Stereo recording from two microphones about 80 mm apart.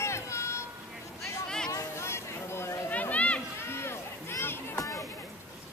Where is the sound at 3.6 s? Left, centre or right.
Left.